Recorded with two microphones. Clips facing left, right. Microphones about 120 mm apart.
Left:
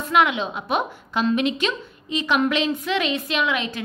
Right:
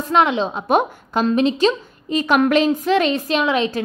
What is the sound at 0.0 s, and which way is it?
A woman's voice, 35° right (ahead or behind).